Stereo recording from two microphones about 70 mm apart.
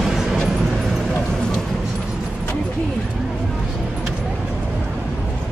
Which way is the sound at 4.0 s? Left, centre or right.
Centre.